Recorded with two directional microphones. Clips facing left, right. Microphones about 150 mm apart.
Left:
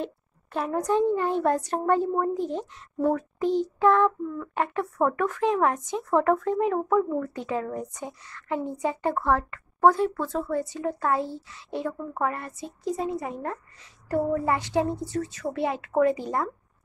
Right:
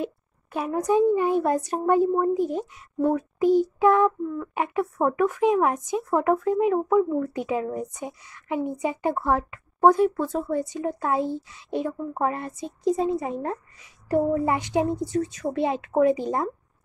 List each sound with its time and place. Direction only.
0.0 s a child's voice: 10° right (ahead or behind)